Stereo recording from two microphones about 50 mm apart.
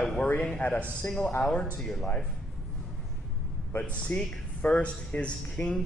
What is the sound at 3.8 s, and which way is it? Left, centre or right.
Speech, left.